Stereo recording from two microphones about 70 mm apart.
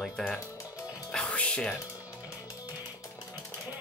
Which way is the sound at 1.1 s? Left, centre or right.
Centre.